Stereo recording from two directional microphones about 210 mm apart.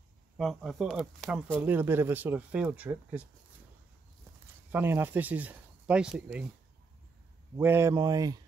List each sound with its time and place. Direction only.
0.4 s speech: centre (ahead or behind)
4.6 s speech: 10° right (ahead or behind)
7.5 s speech: 10° right (ahead or behind)